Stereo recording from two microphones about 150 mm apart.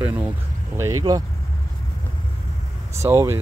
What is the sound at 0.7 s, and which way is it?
Speech, 20° right (ahead or behind).